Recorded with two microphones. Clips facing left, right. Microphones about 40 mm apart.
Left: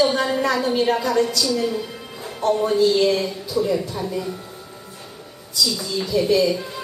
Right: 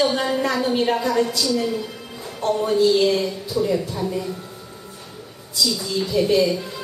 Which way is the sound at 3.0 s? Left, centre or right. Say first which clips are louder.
Even; centre.